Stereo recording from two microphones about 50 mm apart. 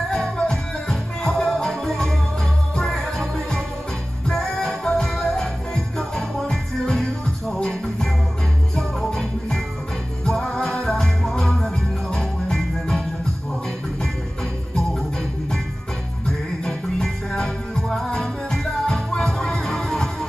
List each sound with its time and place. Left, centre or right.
0.4 s music: centre
6.5 s music: centre
8.7 s music: centre
16.3 s music: centre